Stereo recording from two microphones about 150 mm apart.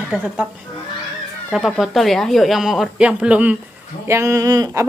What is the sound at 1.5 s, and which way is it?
Speech, centre (ahead or behind).